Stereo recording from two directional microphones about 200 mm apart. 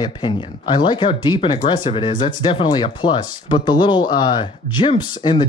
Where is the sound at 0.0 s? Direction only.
20° left (ahead or behind).